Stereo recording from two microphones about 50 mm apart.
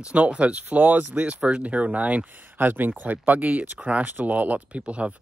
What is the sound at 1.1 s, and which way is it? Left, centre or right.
Speech, right.